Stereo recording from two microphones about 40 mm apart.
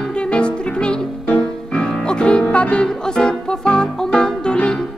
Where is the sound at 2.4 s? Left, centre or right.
Left.